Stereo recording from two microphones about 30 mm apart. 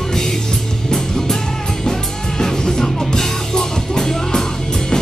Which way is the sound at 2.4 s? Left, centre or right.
Centre.